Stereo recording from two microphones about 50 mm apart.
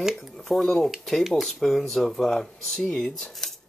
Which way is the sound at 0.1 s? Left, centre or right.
Centre.